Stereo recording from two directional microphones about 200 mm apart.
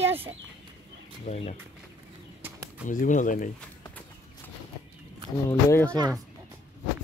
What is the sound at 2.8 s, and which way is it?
Speech, 40° left (ahead or behind).